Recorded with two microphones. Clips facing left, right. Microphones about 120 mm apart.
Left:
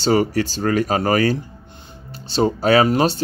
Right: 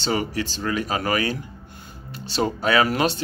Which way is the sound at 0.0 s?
40° left (ahead or behind).